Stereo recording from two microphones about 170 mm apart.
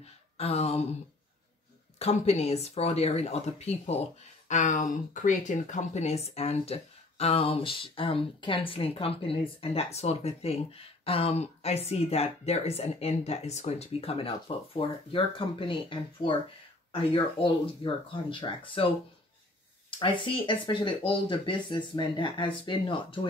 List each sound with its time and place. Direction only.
0.0 s speech: 35° left (ahead or behind)
2.0 s speech: 40° left (ahead or behind)
19.9 s speech: 30° left (ahead or behind)